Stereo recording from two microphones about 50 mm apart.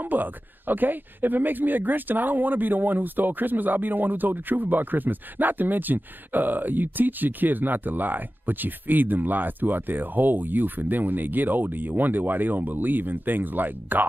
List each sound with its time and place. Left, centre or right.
0.0 s speech: right